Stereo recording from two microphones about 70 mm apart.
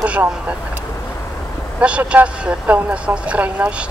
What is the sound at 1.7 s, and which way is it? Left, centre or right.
Speech, centre.